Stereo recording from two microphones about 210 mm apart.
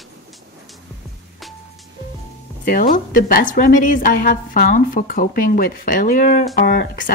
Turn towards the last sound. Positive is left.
turn(degrees=40)  # may be behind; listen again after turning